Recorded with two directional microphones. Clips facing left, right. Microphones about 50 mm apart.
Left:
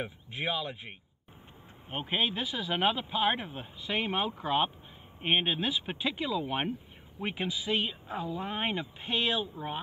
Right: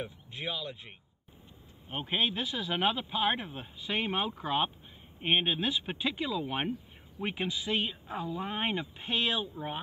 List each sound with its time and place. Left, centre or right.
0.0 s speech: left
2.0 s speech: centre